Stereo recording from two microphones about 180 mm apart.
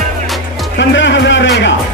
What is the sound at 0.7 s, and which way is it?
Speech, 90° left.